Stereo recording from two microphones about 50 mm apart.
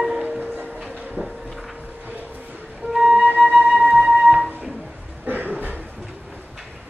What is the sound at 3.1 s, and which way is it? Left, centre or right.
Flute, right.